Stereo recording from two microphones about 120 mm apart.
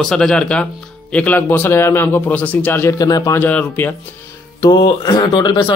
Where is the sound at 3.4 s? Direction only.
15° left (ahead or behind).